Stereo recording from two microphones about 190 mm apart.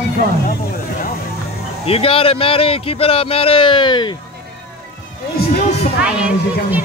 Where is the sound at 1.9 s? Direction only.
30° left (ahead or behind).